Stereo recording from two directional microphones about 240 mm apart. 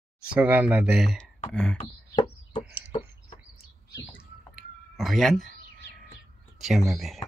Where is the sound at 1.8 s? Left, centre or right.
Centre.